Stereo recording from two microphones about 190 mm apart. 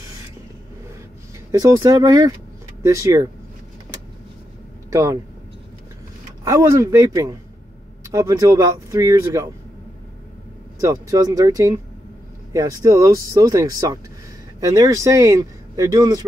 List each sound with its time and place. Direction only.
1.5 s speech: 20° right (ahead or behind)
4.9 s speech: 15° right (ahead or behind)
6.4 s speech: 15° right (ahead or behind)
10.8 s speech: 15° right (ahead or behind)